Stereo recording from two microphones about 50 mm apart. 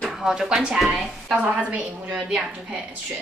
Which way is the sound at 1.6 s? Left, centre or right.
Right.